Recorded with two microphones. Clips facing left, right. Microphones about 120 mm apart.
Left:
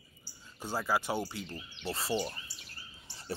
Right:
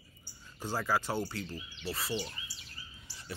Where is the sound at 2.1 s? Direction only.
45° left (ahead or behind).